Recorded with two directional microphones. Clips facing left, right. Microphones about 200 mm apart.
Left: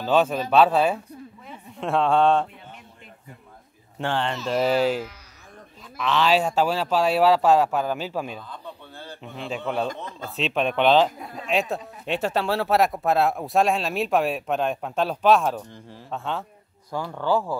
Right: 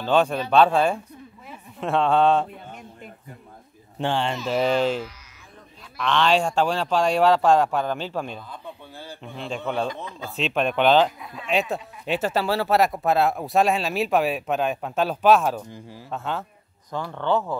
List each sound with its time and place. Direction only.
0.0 s speech: 5° left (ahead or behind)
4.0 s speech: 15° right (ahead or behind)
4.6 s speech: 5° left (ahead or behind)
8.4 s a sound: 10° right (ahead or behind)
9.2 s speech: centre (ahead or behind)
11.1 s a sound: 45° left (ahead or behind)
11.7 s speech: centre (ahead or behind)